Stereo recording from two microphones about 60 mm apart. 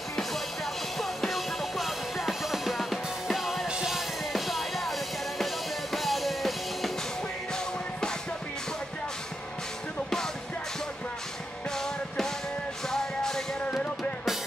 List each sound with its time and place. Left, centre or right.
0.1 s music: centre
3.6 s music: centre
10.0 s music: centre
11.7 s music: centre